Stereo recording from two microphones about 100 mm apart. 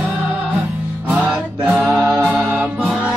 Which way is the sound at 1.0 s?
15° right (ahead or behind).